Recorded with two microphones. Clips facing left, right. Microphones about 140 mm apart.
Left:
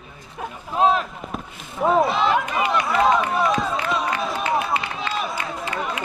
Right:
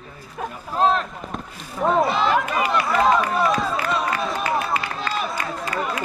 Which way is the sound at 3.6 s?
Centre (ahead or behind).